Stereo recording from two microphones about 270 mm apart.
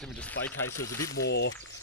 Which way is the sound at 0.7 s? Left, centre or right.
Left.